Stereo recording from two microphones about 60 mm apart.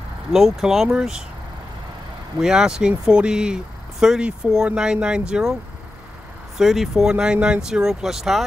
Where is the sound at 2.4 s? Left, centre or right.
Centre.